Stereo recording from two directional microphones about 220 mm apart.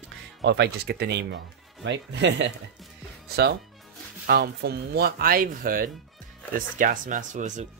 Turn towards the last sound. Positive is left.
turn(degrees=-35)  # may be behind; listen again after turning